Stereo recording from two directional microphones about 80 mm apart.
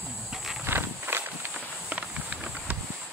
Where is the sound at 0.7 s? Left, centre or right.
Right.